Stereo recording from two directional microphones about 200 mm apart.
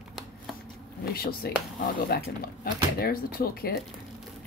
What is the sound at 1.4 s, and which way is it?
A woman's voice, 50° left (ahead or behind).